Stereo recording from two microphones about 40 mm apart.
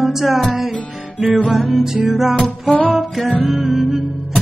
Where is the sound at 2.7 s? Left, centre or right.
Left.